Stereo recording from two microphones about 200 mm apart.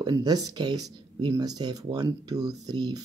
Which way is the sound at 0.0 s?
20° right (ahead or behind).